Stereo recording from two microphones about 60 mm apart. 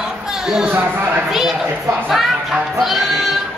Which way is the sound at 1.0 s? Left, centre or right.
Right.